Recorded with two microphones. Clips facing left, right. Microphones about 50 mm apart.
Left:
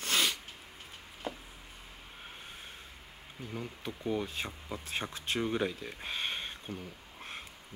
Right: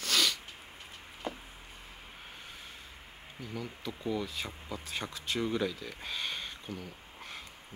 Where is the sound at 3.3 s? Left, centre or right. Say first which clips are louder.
Even; left.